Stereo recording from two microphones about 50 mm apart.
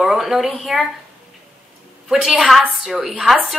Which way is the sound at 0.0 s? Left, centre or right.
Centre.